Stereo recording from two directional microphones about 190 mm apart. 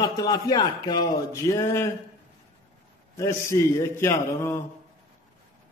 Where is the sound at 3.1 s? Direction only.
15° left (ahead or behind).